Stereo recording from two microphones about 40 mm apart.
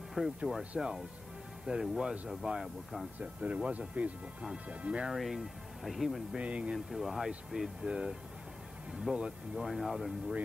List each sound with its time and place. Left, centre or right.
0.2 s speech: centre
2.6 s speech: centre
3.4 s speech: right
5.1 s speech: centre
6.3 s speech: right
6.9 s speech: centre
7.2 s speech: centre